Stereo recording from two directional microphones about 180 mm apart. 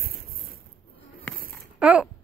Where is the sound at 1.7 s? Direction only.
5° right (ahead or behind).